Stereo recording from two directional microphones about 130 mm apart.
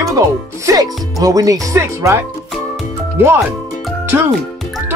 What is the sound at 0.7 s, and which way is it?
Speech, 25° right (ahead or behind).